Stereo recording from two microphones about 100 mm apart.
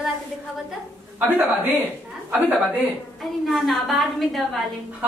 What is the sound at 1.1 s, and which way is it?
Speech, 20° right (ahead or behind).